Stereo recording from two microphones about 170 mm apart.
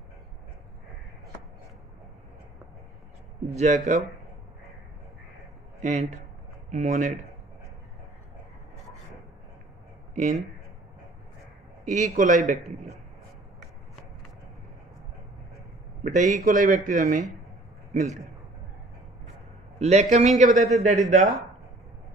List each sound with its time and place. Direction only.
3.5 s speech: 45° right (ahead or behind)
5.8 s speech: 45° right (ahead or behind)
10.1 s speech: 50° right (ahead or behind)
11.8 s speech: 45° right (ahead or behind)
16.0 s speech: 45° right (ahead or behind)
19.8 s a man's voice: 40° right (ahead or behind)
20.5 s a man's voice: centre (ahead or behind)
20.8 s speech: 45° right (ahead or behind)